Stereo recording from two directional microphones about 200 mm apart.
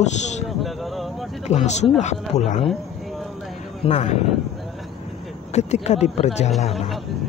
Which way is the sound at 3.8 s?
35° left (ahead or behind).